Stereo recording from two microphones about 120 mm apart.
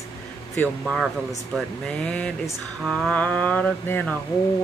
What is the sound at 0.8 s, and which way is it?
Mantra, 5° left (ahead or behind).